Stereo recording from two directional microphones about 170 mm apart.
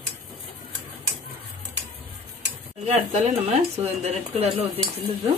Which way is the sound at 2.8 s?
40° right (ahead or behind).